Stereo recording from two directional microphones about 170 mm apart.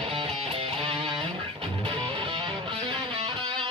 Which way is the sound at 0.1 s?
35° right (ahead or behind).